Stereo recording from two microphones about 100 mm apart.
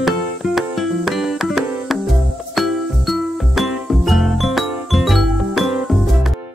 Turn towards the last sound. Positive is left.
turn(degrees=0)  # may be behind; listen again after turning